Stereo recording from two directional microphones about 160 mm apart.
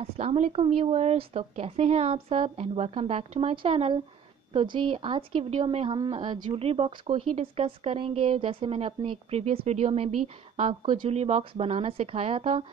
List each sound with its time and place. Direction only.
0.0 s a woman's voice: 40° right (ahead or behind)